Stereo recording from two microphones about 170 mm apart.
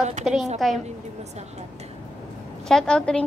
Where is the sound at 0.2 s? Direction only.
Centre (ahead or behind).